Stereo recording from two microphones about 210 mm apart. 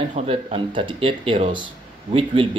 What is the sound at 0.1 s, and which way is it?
Speech, 25° right (ahead or behind).